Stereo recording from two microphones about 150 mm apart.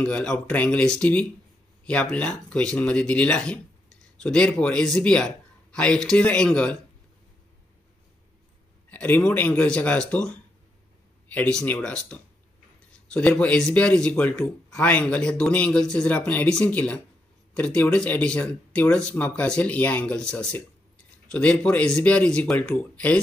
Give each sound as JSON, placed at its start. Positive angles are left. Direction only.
{"t": 0.0, "sound": "speech", "side_deg": 5}
{"t": 8.9, "sound": "speech", "side_deg": 10}